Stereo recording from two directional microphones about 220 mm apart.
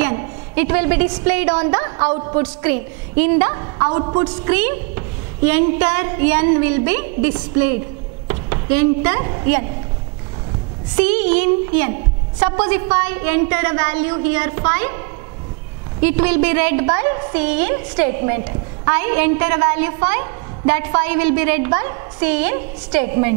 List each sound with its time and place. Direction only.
0.0 s a sound: 15° right (ahead or behind)
1.1 s a woman's voice: 10° right (ahead or behind)
4.5 s a woman's voice: 15° right (ahead or behind)
11.0 s a woman's voice: 10° right (ahead or behind)
12.9 s a woman's voice: 10° right (ahead or behind)